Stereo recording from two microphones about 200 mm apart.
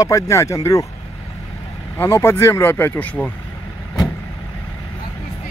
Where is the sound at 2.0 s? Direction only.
10° left (ahead or behind).